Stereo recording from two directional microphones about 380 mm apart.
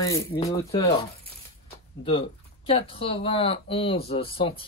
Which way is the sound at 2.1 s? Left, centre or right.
Centre.